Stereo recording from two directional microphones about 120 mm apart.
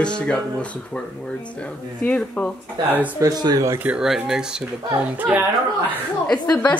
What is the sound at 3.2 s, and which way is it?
Speech, 30° right (ahead or behind).